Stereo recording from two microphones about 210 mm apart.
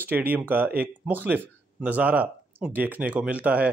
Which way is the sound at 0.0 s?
10° right (ahead or behind).